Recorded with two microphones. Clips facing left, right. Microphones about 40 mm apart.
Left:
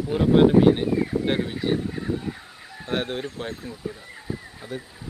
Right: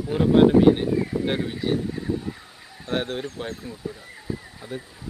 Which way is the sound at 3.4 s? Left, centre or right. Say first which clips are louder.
Even; centre.